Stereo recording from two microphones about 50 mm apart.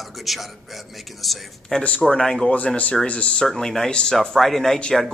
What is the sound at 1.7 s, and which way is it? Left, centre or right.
Speech, centre.